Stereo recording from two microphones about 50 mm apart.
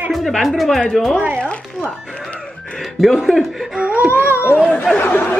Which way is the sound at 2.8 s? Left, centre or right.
Centre.